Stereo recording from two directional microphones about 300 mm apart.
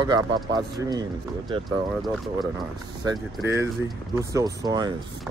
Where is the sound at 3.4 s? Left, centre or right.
Centre.